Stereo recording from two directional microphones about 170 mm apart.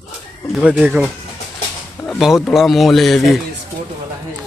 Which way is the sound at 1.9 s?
Centre (ahead or behind).